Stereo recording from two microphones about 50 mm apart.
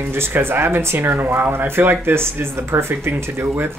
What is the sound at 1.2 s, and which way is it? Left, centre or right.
Speech, right.